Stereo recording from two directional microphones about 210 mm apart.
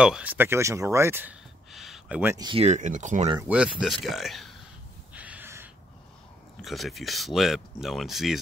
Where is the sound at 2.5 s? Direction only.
30° right (ahead or behind).